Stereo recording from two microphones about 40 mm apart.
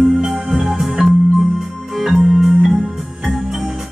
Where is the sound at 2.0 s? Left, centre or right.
Centre.